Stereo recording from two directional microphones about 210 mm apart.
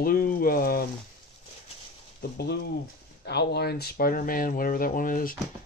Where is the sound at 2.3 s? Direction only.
55° left (ahead or behind).